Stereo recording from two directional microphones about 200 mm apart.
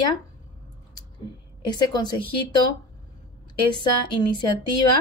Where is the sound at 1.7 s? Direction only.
20° left (ahead or behind).